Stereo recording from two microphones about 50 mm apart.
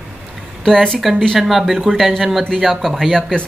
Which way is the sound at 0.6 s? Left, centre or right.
Centre.